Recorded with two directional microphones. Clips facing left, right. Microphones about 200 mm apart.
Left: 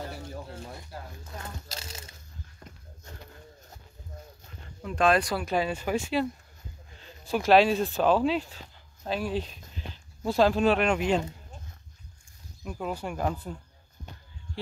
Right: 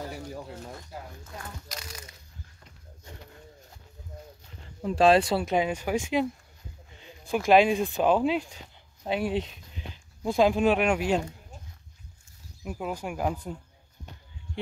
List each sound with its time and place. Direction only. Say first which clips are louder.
1.2 s a sound: left 1 dB; 30° left (ahead or behind)
4.8 s speech: right 4 dB; 30° right (ahead or behind); by 11.2 s 10° right (ahead or behind)
12.7 s speech: even; 10° right (ahead or behind)